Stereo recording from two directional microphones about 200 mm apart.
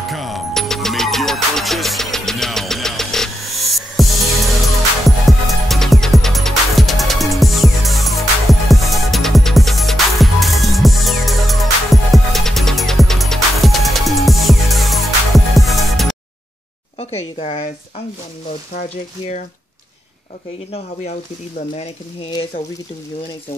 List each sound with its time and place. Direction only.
0.1 s music: centre (ahead or behind)
17.4 s speech: 30° left (ahead or behind)
18.8 s speech: 40° left (ahead or behind)
20.7 s speech: 35° left (ahead or behind)